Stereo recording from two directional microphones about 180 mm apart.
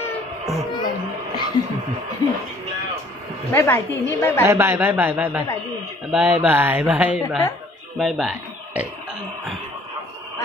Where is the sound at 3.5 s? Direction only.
10° left (ahead or behind).